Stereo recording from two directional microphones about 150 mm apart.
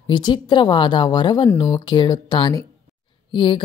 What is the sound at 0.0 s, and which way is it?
A woman's voice, 30° left (ahead or behind).